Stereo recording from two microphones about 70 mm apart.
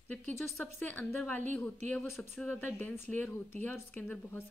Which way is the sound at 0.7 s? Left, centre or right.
Left.